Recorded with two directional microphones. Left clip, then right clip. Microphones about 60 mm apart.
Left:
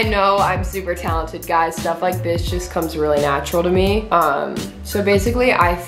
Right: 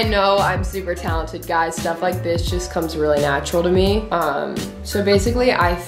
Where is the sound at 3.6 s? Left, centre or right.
Centre.